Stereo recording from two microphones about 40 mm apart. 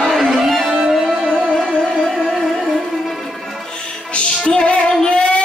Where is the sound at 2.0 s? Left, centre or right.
Centre.